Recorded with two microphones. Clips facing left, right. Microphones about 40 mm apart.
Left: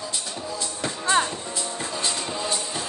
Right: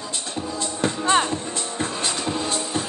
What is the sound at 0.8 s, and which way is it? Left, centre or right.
Music, right.